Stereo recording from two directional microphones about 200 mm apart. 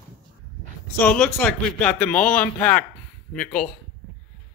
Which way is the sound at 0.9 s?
5° left (ahead or behind).